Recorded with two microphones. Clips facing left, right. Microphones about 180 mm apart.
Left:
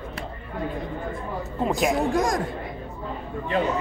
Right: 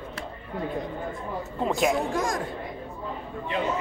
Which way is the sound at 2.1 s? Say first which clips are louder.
Left 4 dB; 40° left (ahead or behind).